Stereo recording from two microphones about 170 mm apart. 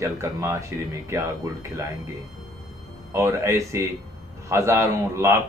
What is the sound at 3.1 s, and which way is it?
Speech, 15° right (ahead or behind).